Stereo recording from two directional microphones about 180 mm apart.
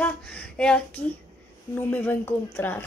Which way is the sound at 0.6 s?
5° left (ahead or behind).